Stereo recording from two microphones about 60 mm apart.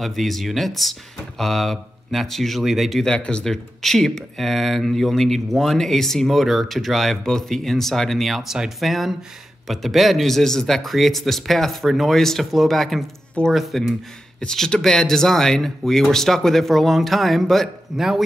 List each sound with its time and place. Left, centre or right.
0.0 s speech: centre
3.1 s speech: centre
14.4 s speech: centre